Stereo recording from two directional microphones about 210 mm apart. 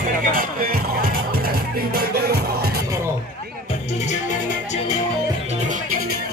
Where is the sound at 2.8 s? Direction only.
15° right (ahead or behind).